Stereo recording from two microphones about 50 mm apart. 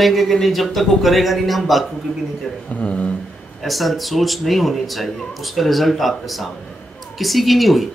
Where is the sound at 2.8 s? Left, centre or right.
Left.